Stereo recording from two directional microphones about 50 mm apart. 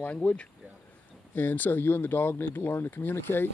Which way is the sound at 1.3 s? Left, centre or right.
Left.